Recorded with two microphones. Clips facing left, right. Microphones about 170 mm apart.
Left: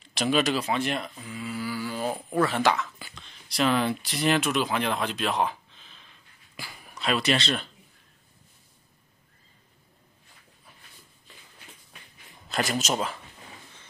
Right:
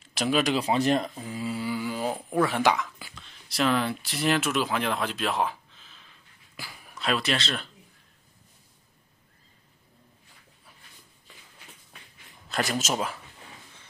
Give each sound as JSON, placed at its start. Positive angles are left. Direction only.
{"t": 0.1, "sound": "speech", "side_deg": -5}
{"t": 0.7, "sound": "speech", "side_deg": -40}
{"t": 1.7, "sound": "a sound", "side_deg": -15}
{"t": 2.1, "sound": "speech", "side_deg": 0}
{"t": 2.4, "sound": "speech", "side_deg": -15}
{"t": 12.4, "sound": "speech", "side_deg": 0}